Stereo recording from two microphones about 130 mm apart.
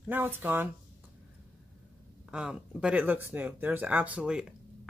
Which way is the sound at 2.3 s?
5° right (ahead or behind).